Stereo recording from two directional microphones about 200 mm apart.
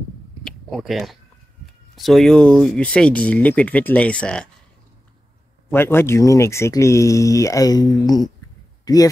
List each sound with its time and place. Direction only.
0.4 s a sound: centre (ahead or behind)
2.0 s speech: centre (ahead or behind)
5.7 s speech: 10° left (ahead or behind)